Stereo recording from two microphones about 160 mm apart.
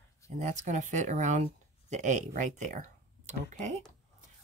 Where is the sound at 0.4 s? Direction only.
50° right (ahead or behind).